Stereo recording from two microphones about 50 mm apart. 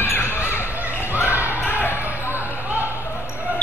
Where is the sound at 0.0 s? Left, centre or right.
Left.